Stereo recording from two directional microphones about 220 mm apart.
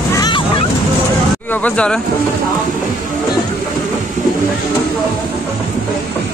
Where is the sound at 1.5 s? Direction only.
5° left (ahead or behind).